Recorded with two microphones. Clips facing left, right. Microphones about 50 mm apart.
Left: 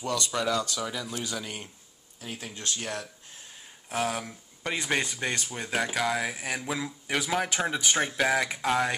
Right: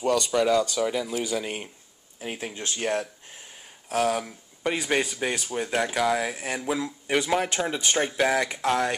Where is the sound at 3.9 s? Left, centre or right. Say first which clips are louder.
Right 5 dB; centre.